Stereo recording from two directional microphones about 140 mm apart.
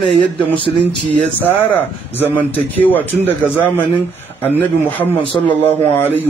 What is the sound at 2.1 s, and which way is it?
Speech, 15° left (ahead or behind).